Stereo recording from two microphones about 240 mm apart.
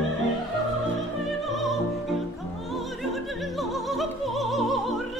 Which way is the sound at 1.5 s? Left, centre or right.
Centre.